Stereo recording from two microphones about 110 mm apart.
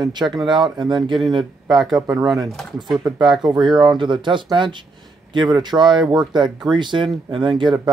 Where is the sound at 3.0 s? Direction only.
40° right (ahead or behind).